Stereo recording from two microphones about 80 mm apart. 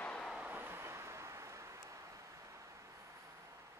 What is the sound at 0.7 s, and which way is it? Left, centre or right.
Vehicle, right.